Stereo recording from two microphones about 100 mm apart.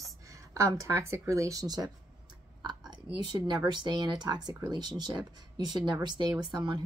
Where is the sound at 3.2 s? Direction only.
45° right (ahead or behind).